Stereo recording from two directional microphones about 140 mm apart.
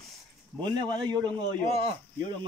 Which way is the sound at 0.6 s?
30° right (ahead or behind).